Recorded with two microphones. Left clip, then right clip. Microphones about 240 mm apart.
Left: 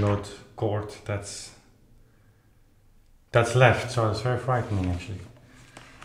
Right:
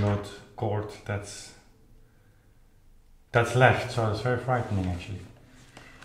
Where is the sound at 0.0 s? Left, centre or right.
Left.